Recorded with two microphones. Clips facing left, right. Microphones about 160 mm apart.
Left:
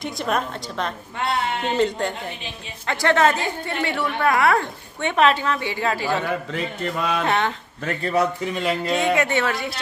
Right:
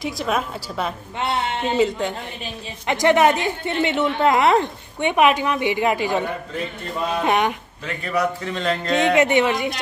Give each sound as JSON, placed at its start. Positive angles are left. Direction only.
{"t": 0.0, "sound": "a woman's voice", "side_deg": 0}
{"t": 2.9, "sound": "a woman's voice", "side_deg": -15}
{"t": 8.0, "sound": "a man's voice", "side_deg": 25}
{"t": 8.5, "sound": "speech", "side_deg": 10}
{"t": 8.9, "sound": "speech", "side_deg": -20}